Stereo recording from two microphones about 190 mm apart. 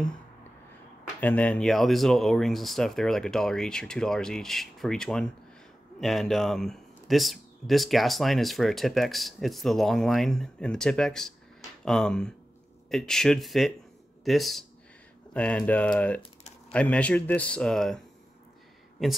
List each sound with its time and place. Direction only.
1.2 s speech: 5° left (ahead or behind)
16.2 s a sound: 35° left (ahead or behind)
16.7 s speech: 5° left (ahead or behind)